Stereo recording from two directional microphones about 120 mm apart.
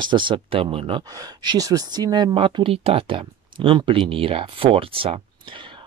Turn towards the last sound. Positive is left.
turn(degrees=-45)  # may be behind; listen again after turning